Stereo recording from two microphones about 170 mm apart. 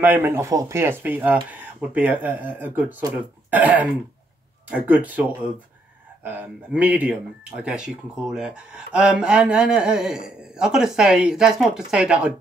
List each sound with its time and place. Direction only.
0.0 s speech: 10° right (ahead or behind)
6.2 s speech: 10° right (ahead or behind)